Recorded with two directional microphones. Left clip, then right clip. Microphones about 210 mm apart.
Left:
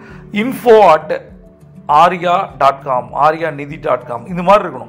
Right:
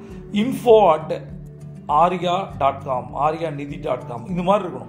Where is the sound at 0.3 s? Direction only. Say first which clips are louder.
Left 5 dB; 15° left (ahead or behind).